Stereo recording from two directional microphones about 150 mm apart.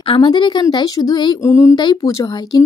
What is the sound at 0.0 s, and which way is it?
Speech, 35° left (ahead or behind).